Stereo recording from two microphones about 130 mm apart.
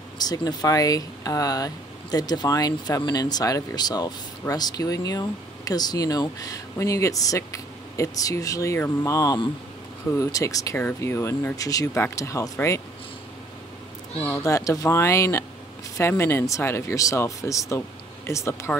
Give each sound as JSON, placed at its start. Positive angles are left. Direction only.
{"t": 0.2, "sound": "speech", "side_deg": 30}
{"t": 14.3, "sound": "speech", "side_deg": 25}